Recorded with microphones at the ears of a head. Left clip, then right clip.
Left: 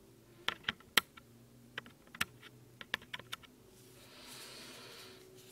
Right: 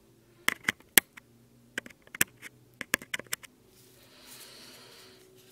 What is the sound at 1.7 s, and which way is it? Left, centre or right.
Computer keyboard, right.